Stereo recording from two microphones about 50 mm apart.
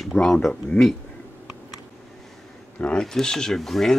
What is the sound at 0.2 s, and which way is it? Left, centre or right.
Speech, centre.